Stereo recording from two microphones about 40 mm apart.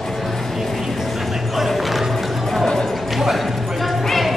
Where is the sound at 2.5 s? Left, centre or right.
Centre.